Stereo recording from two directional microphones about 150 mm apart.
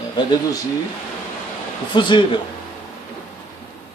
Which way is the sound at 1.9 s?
35° left (ahead or behind).